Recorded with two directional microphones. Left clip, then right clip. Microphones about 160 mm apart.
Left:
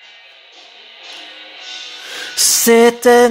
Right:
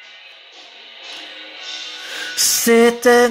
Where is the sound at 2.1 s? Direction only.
20° left (ahead or behind).